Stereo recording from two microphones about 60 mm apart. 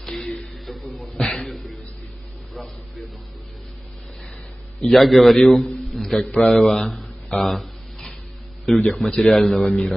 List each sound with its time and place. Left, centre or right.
0.0 s music: centre
4.8 s a man's voice: centre
5.9 s a sound: centre
8.6 s a man's voice: centre